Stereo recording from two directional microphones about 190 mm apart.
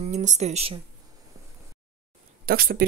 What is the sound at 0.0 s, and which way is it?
Speech, 40° right (ahead or behind).